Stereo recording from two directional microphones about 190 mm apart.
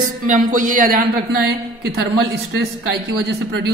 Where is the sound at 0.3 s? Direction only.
45° right (ahead or behind).